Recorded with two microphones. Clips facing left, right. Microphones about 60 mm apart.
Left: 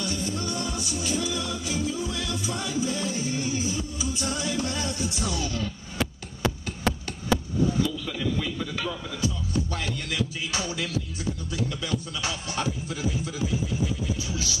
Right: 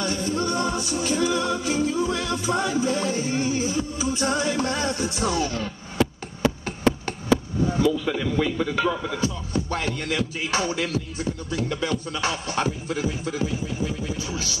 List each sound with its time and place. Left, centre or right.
0.0 s music: right